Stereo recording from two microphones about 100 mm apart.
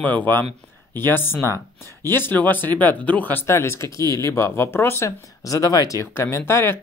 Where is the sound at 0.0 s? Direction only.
15° left (ahead or behind).